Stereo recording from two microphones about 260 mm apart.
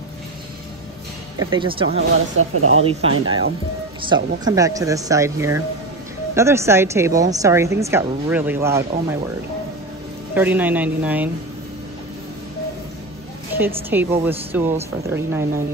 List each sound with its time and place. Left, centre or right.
1.4 s speech: centre
2.3 s speech: right
2.8 s a woman's voice: right
10.3 s a woman's voice: centre
13.5 s a woman's voice: centre